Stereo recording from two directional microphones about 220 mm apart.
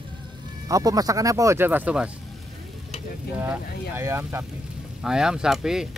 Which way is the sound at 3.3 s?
10° right (ahead or behind).